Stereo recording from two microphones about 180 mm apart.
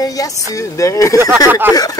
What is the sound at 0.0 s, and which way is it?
Speech, 20° left (ahead or behind).